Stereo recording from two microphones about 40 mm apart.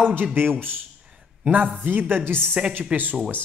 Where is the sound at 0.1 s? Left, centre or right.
Right.